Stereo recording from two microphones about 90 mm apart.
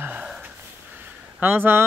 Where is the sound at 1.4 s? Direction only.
25° right (ahead or behind).